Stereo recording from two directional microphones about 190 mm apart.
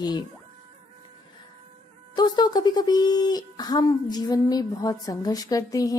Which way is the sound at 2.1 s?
20° left (ahead or behind).